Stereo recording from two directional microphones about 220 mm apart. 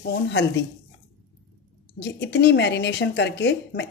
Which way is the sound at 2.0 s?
50° left (ahead or behind).